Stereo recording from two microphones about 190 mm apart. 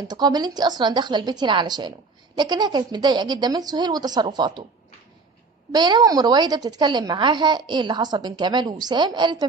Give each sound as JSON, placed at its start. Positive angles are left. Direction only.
{"t": 0.1, "sound": "a woman's voice", "side_deg": -20}
{"t": 5.7, "sound": "a woman's voice", "side_deg": -20}